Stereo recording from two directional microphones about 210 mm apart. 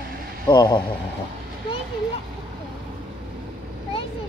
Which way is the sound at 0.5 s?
20° left (ahead or behind).